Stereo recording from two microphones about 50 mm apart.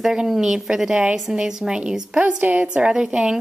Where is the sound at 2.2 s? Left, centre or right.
Right; by 3.4 s centre.